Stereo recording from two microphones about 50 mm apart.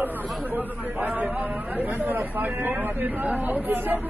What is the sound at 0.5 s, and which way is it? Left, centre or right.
A man's voice, right.